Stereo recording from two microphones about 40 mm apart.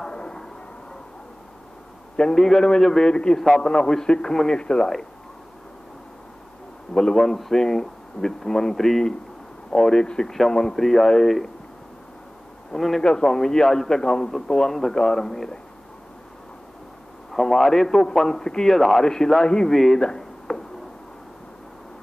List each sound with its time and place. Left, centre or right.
0.0 s a sound: centre
2.1 s a man's voice: centre
3.1 s a man's voice: left
6.9 s a man's voice: centre
10.8 s a man's voice: centre
12.7 s a man's voice: centre
17.3 s a man's voice: centre
19.7 s speech: centre
20.0 s a sound: centre